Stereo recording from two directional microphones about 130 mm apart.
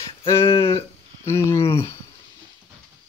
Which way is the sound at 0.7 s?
20° left (ahead or behind).